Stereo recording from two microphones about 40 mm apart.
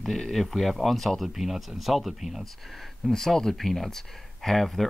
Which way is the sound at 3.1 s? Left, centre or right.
Centre.